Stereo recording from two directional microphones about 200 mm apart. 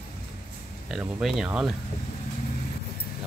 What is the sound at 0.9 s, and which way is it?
Speech, 5° right (ahead or behind).